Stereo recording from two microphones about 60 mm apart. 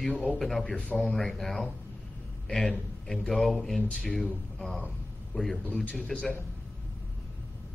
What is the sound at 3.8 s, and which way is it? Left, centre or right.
Speech, centre.